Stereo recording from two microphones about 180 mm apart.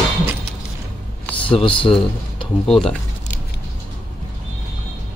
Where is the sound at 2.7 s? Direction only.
5° left (ahead or behind).